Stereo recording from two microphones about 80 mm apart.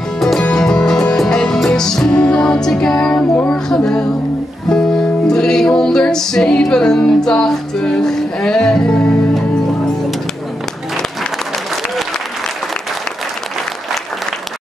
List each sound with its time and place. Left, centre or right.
0.2 s music: centre